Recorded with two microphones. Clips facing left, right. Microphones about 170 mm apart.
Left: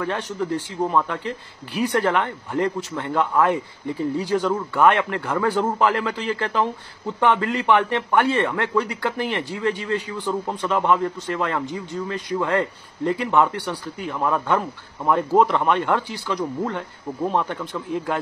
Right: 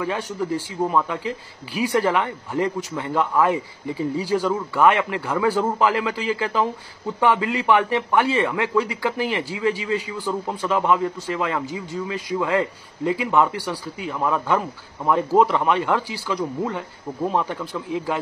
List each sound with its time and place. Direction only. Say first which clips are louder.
0.0 s a man's voice: even; 5° right (ahead or behind)